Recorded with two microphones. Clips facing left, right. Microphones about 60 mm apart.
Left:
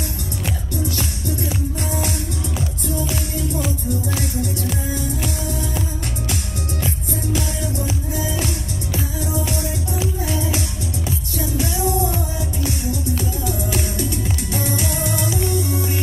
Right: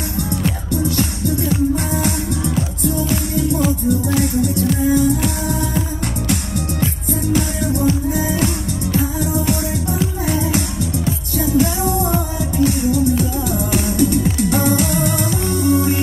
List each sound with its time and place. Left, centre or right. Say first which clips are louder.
0.8 s music: right 7 dB; right
6.2 s music: right 6 dB; right
11.5 s music: right 4 dB; right
14.5 s music: right 6 dB; right